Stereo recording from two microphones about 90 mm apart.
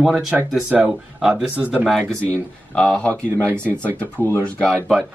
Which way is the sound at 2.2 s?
10° left (ahead or behind).